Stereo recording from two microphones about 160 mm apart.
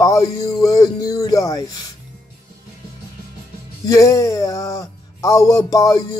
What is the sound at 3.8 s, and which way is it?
Speech, 20° left (ahead or behind).